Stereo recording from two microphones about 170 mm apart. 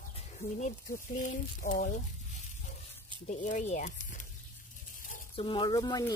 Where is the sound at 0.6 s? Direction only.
50° left (ahead or behind).